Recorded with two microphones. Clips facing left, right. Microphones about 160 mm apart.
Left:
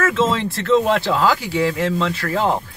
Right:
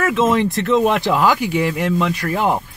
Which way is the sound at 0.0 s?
15° right (ahead or behind).